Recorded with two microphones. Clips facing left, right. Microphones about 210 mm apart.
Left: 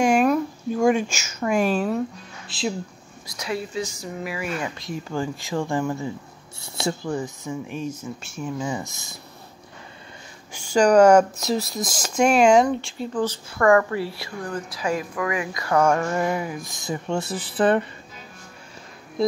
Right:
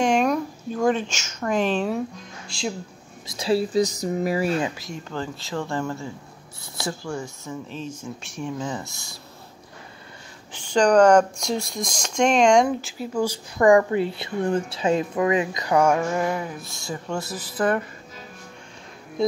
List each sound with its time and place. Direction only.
0.0 s speech: 5° left (ahead or behind)
3.3 s speech: 30° right (ahead or behind)
4.7 s speech: centre (ahead or behind)
5.1 s speech: 15° left (ahead or behind)
8.0 s speech: centre (ahead or behind); by 9.1 s 15° left (ahead or behind)
10.5 s speech: 10° left (ahead or behind)
12.6 s speech: 5° right (ahead or behind); by 17.8 s 30° left (ahead or behind)
19.2 s speech: centre (ahead or behind)